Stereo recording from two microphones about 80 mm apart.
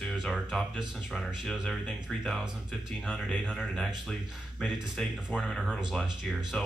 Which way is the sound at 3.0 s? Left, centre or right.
Centre.